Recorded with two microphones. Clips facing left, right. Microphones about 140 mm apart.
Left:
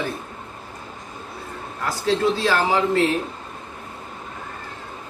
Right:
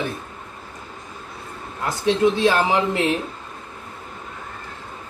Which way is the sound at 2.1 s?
20° right (ahead or behind).